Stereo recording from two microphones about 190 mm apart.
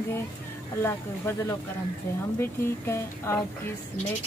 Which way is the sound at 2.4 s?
15° left (ahead or behind).